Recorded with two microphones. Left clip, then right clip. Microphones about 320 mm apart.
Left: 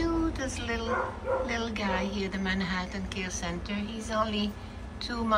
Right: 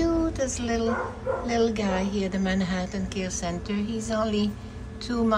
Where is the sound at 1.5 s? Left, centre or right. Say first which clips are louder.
Right 6 dB; centre.